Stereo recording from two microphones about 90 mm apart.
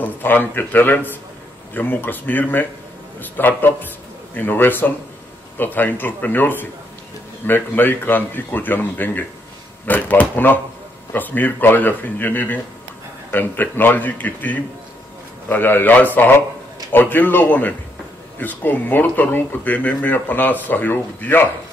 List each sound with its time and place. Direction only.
0.0 s a man's voice: 20° left (ahead or behind)